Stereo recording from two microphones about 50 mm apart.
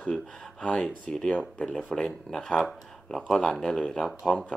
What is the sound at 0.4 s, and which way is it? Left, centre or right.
Speech, centre.